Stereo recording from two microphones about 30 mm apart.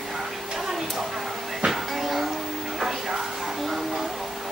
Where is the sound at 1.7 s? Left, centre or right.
Centre.